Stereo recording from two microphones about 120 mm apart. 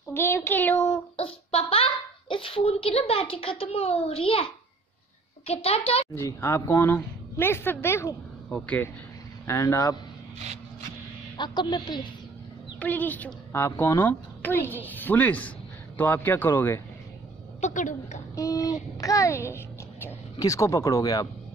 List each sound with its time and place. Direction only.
0.1 s a woman's voice: 20° left (ahead or behind)
1.1 s a child's voice: 55° left (ahead or behind)
5.5 s a child's voice: 55° left (ahead or behind)
6.1 s speech: 20° left (ahead or behind)
8.5 s a woman's voice: 10° left (ahead or behind)
9.5 s speech: 25° left (ahead or behind)
10.4 s a sound: 70° right (ahead or behind)
11.3 s a woman's voice: 40° left (ahead or behind)
12.7 s a woman's voice: 15° left (ahead or behind)
17.6 s a woman's voice: 90° left
18.3 s a child's voice: 30° left (ahead or behind)